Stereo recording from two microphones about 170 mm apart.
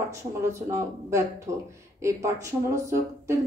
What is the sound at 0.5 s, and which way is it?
A woman's voice, 15° right (ahead or behind).